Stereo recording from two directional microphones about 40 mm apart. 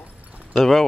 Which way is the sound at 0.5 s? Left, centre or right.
Centre.